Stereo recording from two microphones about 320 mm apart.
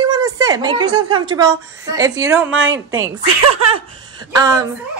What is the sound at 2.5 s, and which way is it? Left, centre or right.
Speech, right.